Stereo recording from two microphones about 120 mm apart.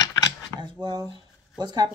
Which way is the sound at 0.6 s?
40° right (ahead or behind).